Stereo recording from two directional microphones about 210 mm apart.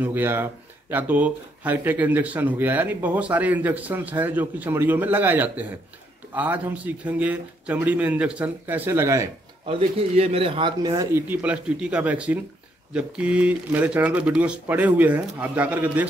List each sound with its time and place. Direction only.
0.0 s speech: 10° right (ahead or behind)
9.7 s speech: 25° right (ahead or behind); by 16.1 s 5° right (ahead or behind)